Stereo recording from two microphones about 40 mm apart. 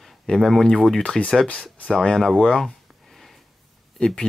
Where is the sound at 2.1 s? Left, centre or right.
Centre.